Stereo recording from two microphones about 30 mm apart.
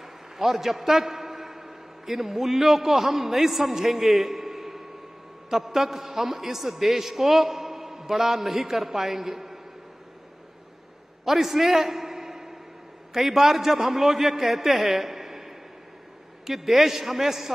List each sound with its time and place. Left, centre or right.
0.0 s a man's voice: centre
4.3 s a sound: centre
5.5 s a man's voice: centre
11.2 s a man's voice: centre